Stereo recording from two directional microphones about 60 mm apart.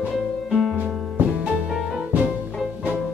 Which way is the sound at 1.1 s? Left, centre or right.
Right.